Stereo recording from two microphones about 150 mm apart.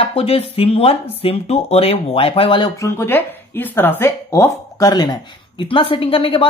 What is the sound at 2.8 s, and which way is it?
A woman's voice, 15° left (ahead or behind).